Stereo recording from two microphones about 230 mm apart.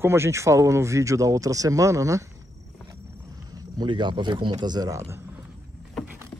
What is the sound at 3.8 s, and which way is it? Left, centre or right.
Speech, centre.